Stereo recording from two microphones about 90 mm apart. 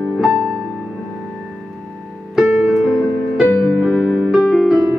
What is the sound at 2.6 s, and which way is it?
Music, centre (ahead or behind).